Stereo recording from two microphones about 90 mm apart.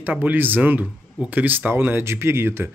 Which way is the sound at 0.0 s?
20° right (ahead or behind).